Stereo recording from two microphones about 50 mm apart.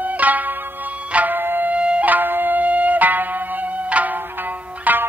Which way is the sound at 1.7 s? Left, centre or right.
Right.